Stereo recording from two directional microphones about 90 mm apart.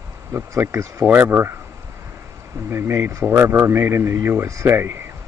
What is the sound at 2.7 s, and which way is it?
Speech, 25° right (ahead or behind).